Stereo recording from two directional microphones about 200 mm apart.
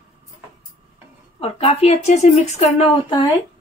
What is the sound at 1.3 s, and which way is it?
Speech, 30° left (ahead or behind).